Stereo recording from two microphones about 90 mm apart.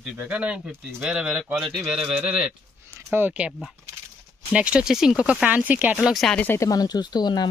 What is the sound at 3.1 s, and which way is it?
Speech, 25° right (ahead or behind).